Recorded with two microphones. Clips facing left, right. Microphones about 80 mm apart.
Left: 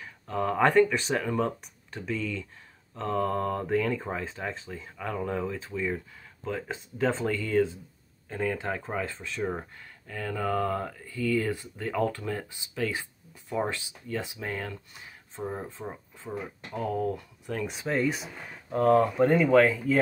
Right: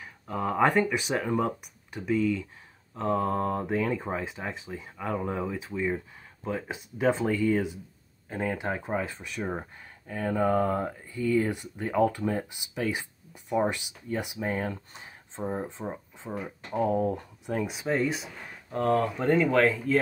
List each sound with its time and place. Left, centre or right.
0.0 s speech: centre
16.7 s speech: right
17.6 s speech: centre